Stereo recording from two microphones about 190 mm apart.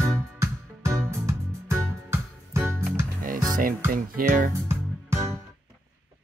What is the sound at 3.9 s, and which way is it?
Music, 50° right (ahead or behind).